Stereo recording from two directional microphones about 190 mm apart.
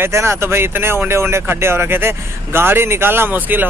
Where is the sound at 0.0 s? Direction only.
15° right (ahead or behind).